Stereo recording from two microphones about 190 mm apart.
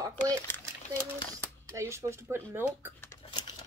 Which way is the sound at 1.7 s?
15° right (ahead or behind).